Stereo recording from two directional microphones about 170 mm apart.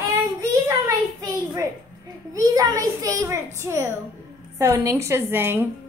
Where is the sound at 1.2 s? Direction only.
20° right (ahead or behind).